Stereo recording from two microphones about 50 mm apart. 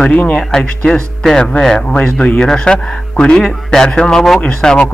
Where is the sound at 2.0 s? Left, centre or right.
Left.